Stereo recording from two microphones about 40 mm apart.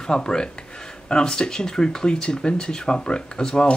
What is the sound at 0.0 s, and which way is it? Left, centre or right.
Speech, centre.